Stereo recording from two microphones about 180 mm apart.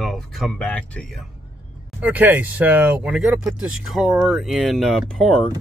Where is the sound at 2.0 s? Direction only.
10° right (ahead or behind).